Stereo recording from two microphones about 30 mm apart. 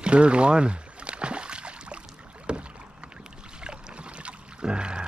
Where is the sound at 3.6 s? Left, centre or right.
Right.